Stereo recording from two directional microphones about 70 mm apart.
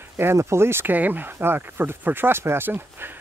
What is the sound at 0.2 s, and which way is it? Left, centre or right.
Speech, right.